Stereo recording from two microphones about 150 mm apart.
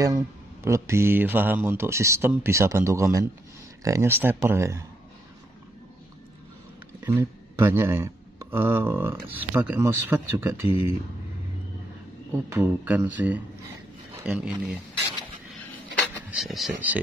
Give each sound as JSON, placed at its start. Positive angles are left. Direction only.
{"t": 0.0, "sound": "speech", "side_deg": -20}
{"t": 7.1, "sound": "speech", "side_deg": -20}
{"t": 12.4, "sound": "speech", "side_deg": -15}
{"t": 16.3, "sound": "speech", "side_deg": 0}